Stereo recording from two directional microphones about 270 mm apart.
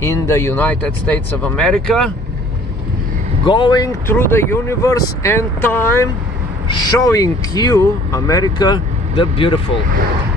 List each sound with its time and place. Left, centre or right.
0.0 s speech: centre
3.4 s speech: centre